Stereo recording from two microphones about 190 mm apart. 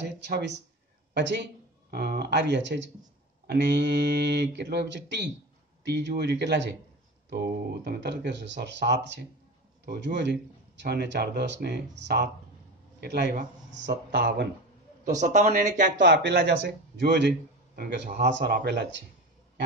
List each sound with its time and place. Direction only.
1.1 s speech: 65° right (ahead or behind)
15.0 s speech: 40° right (ahead or behind)
16.0 s speech: 70° right (ahead or behind)